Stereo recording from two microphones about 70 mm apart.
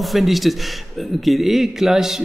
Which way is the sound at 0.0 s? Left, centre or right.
Centre.